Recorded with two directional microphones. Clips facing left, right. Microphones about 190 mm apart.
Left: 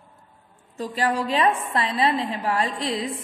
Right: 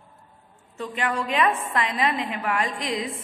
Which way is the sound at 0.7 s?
35° left (ahead or behind).